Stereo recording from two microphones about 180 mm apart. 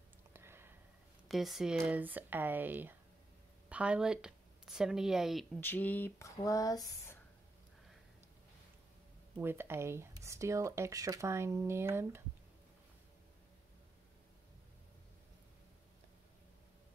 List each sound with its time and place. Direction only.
0.3 s a sound: 15° right (ahead or behind)
1.3 s speech: centre (ahead or behind)
5.6 s speech: 10° left (ahead or behind)
9.4 s speech: 10° right (ahead or behind)